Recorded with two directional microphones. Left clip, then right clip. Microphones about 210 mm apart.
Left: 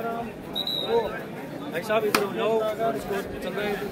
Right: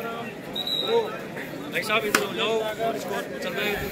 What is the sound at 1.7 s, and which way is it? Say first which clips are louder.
Speech: even; 35° left (ahead or behind).